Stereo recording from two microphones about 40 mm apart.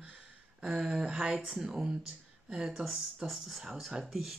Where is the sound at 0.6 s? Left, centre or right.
Centre.